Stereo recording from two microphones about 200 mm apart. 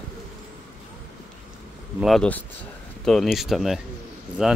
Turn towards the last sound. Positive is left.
turn(degrees=0)  # may be behind; listen again after turning